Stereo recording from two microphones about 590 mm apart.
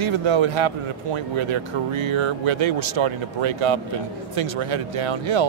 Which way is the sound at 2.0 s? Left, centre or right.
Right.